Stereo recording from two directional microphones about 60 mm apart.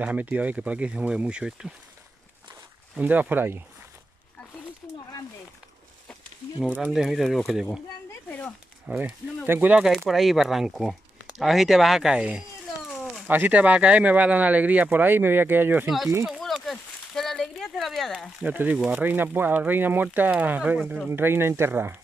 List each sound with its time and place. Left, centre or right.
0.0 s speech: right
3.0 s speech: right
4.8 s a sound: left
6.9 s speech: centre
8.3 s a sound: left
8.8 s speech: right
9.5 s speech: right
9.8 s speech: centre
13.3 s speech: right
16.3 s a sound: centre
18.4 s speech: right
21.1 s speech: right